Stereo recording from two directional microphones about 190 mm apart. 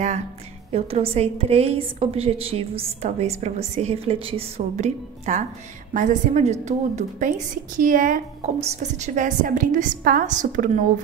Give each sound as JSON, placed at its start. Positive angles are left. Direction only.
{"t": 0.7, "sound": "a woman's voice", "side_deg": -30}